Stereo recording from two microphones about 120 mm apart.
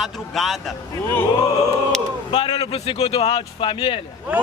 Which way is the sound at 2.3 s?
40° left (ahead or behind).